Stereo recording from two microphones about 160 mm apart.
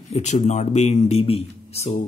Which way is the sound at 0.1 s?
45° left (ahead or behind).